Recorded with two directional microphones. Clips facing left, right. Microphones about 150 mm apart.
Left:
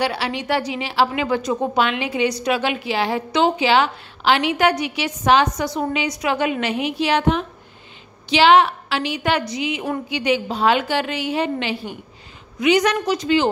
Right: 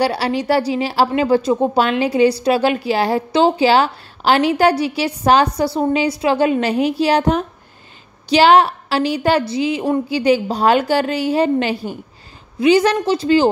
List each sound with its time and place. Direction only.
0.0 s a woman's voice: 40° right (ahead or behind)